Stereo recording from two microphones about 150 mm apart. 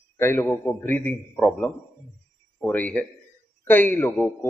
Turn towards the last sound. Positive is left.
turn(degrees=10)  # may be behind; listen again after turning